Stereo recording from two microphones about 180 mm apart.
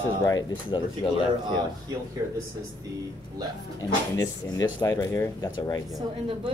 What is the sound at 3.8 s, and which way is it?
Speech, 20° left (ahead or behind).